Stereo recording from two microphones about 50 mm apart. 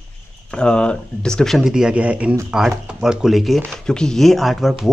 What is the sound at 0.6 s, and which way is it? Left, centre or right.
Speech, centre.